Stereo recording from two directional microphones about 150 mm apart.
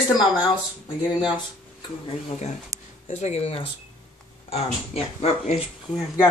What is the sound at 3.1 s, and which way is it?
Speech, 50° left (ahead or behind).